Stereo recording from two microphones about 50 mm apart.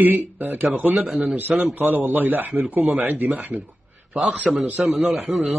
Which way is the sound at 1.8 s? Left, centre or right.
Right.